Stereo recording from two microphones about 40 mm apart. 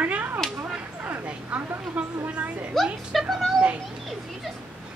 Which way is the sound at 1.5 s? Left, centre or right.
Right.